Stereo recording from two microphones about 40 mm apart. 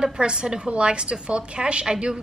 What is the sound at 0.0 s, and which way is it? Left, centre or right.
A woman's voice, centre.